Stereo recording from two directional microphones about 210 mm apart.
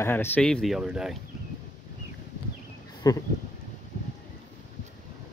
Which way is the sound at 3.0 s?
20° left (ahead or behind).